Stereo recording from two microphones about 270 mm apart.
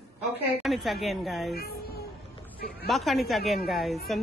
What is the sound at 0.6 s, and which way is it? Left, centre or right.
Speech, centre.